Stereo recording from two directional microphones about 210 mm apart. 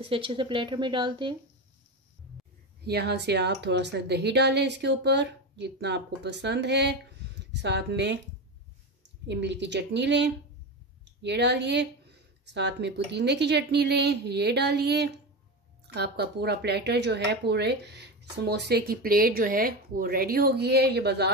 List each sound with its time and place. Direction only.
0.0 s speech: 25° right (ahead or behind)
2.8 s a woman's voice: 50° right (ahead or behind)
9.3 s a woman's voice: 55° right (ahead or behind)